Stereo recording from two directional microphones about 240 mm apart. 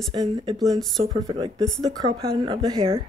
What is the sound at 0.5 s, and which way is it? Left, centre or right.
Speech, centre.